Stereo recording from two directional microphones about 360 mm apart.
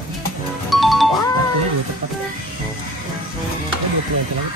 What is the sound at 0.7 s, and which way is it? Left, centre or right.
Music, centre.